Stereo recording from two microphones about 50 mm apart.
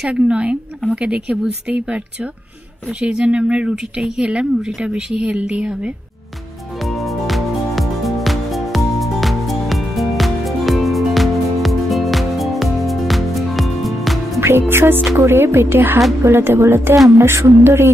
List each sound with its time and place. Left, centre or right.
0.1 s speech: right
3.0 s speech: centre
7.2 s music: centre
14.4 s speech: right